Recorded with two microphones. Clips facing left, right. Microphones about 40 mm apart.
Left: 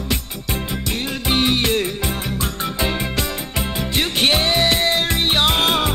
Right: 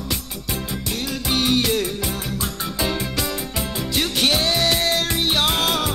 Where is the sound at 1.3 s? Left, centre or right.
Left.